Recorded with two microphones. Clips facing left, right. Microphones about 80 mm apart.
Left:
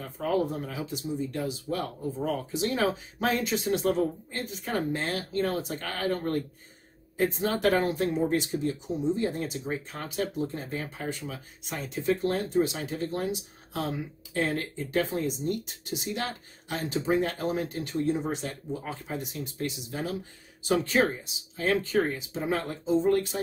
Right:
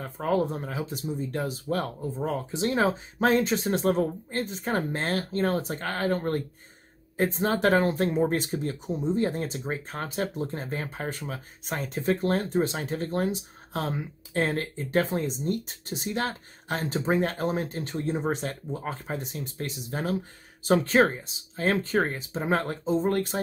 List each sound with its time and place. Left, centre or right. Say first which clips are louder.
0.2 s speech: right 1 dB; right
2.5 s speech: right 4 dB; right
8.0 s speech: right 2 dB; right